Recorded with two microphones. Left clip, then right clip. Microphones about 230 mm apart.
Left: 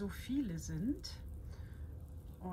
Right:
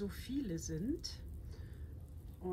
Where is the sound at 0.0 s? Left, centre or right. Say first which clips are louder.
Left 2 dB; centre.